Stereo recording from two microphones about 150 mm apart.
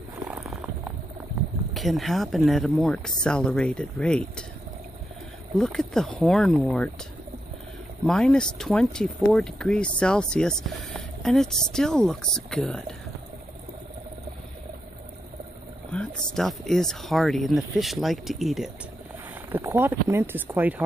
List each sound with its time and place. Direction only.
0.3 s a sound: 5° right (ahead or behind)
1.7 s speech: centre (ahead or behind)
5.6 s speech: 5° left (ahead or behind)
8.1 s speech: 5° left (ahead or behind)
15.9 s speech: 5° left (ahead or behind)
19.5 s speech: 15° right (ahead or behind)